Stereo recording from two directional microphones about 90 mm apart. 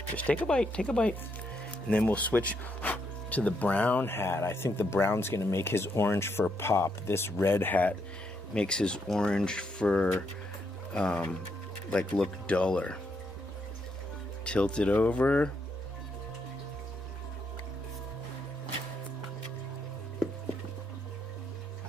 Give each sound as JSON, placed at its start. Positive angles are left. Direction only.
{"t": 0.1, "sound": "speech", "side_deg": 15}
{"t": 8.5, "sound": "speech", "side_deg": 10}
{"t": 14.4, "sound": "speech", "side_deg": 10}